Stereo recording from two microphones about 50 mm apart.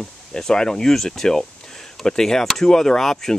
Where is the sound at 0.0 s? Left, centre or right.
Centre.